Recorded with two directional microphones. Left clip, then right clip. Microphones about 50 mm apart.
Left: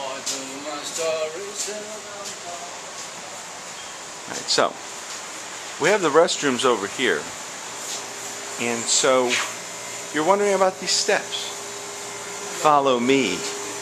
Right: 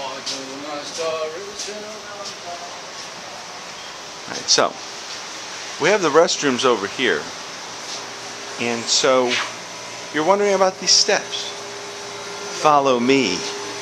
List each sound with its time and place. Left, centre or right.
4.3 s speech: right
5.8 s speech: centre
8.5 s speech: centre
10.6 s speech: right
12.5 s a sound: right
12.8 s speech: right